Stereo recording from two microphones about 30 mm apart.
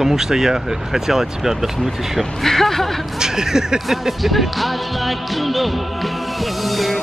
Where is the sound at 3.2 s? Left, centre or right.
Centre.